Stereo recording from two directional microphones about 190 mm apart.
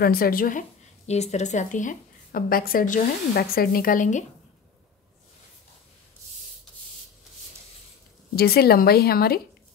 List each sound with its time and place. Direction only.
0.0 s a woman's voice: 50° left (ahead or behind)
8.4 s speech: 55° left (ahead or behind)